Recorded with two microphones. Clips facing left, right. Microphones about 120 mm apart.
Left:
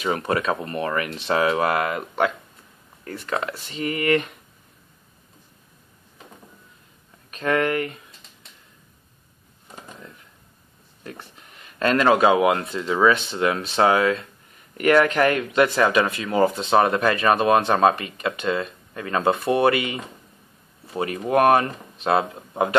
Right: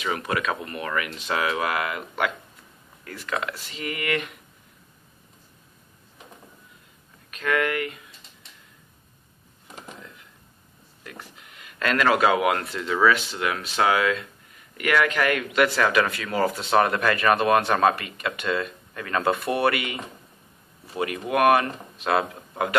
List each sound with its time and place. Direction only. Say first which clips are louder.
0.0 s speech: left 4 dB; 35° left (ahead or behind)
7.2 s speech: left 3 dB; 35° left (ahead or behind)
11.1 s speech: left 3 dB; 30° left (ahead or behind)